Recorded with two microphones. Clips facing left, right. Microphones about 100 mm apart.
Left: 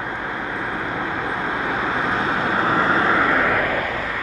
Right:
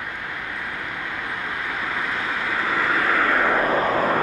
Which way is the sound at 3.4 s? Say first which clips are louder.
Right 1 dB; 20° right (ahead or behind).